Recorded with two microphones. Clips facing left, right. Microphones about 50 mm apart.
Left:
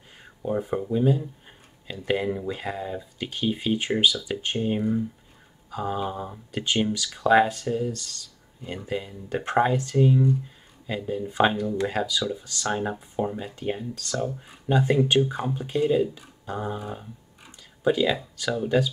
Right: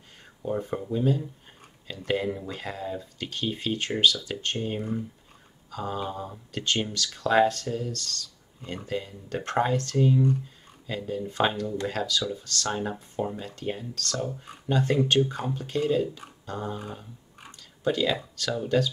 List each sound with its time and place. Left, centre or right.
0.2 s speech: centre